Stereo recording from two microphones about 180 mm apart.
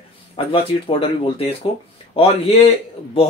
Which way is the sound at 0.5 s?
30° left (ahead or behind).